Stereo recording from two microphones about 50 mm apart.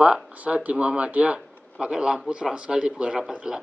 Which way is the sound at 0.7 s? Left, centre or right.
Right.